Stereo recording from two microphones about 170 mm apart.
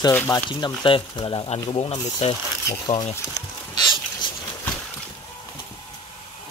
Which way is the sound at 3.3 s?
25° left (ahead or behind).